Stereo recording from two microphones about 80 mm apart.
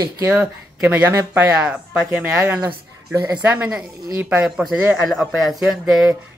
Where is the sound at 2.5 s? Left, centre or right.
Right.